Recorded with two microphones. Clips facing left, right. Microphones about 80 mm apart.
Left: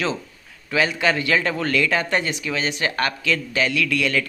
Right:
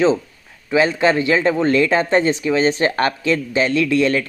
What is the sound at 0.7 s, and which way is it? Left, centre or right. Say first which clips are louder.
Speech: right 5 dB; right.